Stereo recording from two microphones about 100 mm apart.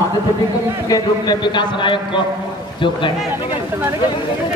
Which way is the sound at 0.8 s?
40° left (ahead or behind).